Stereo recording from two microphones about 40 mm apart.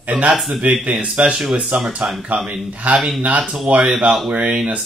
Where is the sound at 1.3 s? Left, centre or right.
Centre.